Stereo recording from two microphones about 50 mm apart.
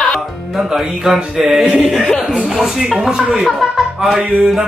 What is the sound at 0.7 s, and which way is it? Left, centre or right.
Speech, centre.